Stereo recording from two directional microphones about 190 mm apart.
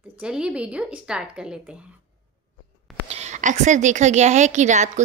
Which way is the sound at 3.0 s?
35° right (ahead or behind).